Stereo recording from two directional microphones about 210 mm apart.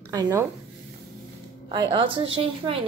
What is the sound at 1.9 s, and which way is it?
Speech, 25° right (ahead or behind).